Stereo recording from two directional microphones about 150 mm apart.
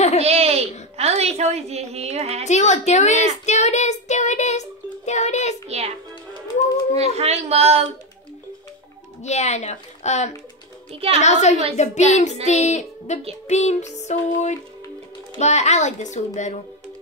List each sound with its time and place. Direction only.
0.2 s a sound: 45° right (ahead or behind)
0.9 s a woman's voice: 45° right (ahead or behind)
2.4 s speech: 50° left (ahead or behind)
5.7 s a woman's voice: 45° right (ahead or behind)
7.0 s a woman's voice: 45° right (ahead or behind)
9.2 s speech: 50° left (ahead or behind)